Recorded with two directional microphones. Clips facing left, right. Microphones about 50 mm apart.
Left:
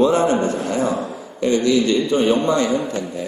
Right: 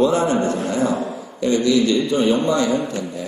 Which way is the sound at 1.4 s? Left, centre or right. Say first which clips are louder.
Even; left.